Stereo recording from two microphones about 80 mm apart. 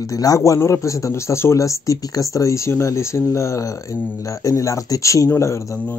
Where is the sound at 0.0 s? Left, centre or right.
Left.